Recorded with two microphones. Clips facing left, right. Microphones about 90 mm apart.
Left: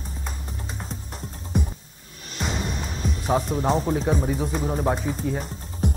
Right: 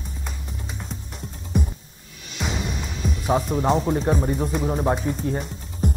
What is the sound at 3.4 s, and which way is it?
Speech, 40° right (ahead or behind).